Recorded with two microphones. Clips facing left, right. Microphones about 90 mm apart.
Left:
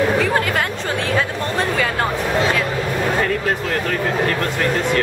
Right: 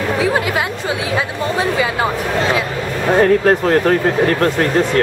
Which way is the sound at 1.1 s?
10° right (ahead or behind).